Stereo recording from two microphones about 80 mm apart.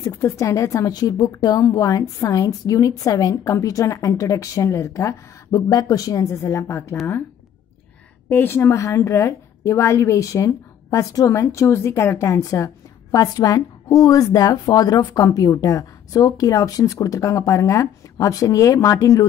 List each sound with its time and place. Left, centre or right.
0.0 s a woman's voice: left
8.3 s a woman's voice: left